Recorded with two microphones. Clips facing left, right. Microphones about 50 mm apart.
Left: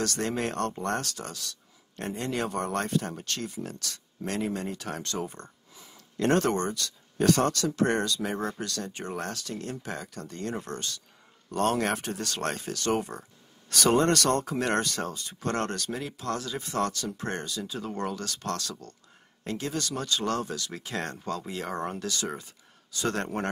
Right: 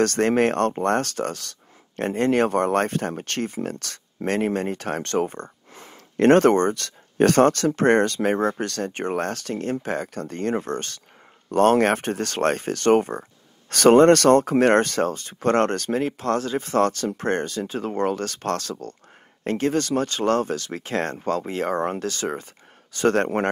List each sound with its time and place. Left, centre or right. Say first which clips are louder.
0.0 s speech: right 11 dB; right